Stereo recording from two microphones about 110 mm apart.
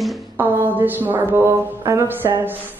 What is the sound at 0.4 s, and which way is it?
A woman's voice, 15° right (ahead or behind).